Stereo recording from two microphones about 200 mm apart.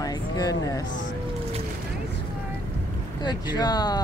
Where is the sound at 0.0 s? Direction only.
20° left (ahead or behind).